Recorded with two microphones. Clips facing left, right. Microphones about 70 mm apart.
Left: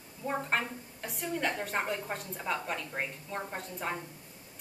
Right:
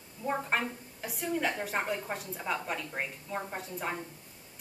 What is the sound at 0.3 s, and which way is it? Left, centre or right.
A woman's voice, centre.